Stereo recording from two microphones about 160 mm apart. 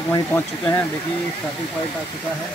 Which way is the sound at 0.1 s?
15° left (ahead or behind).